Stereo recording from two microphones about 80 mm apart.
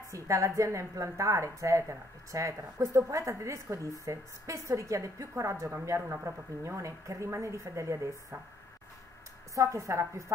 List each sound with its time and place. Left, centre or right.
0.1 s a woman's voice: right
9.6 s a woman's voice: right